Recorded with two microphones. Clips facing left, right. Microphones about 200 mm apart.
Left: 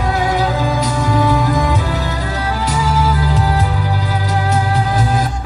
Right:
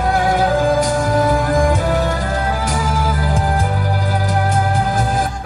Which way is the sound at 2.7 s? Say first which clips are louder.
Left 3 dB; 50° right (ahead or behind).